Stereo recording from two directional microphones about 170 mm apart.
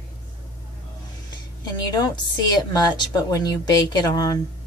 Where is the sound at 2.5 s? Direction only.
25° left (ahead or behind).